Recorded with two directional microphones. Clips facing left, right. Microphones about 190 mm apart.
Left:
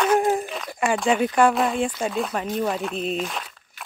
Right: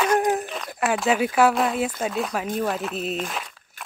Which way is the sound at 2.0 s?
Centre (ahead or behind).